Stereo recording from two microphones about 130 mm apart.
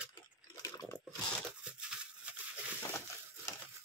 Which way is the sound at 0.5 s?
25° left (ahead or behind).